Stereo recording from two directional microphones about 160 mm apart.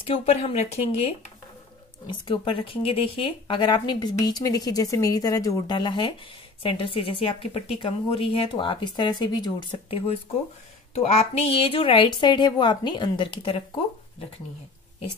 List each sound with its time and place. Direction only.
0.0 s a woman's voice: 35° left (ahead or behind)